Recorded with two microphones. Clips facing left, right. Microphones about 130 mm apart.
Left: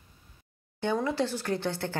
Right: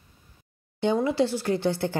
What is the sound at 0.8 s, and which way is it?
Speech, 15° right (ahead or behind).